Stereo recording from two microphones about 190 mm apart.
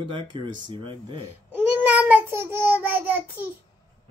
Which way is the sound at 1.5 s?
10° right (ahead or behind).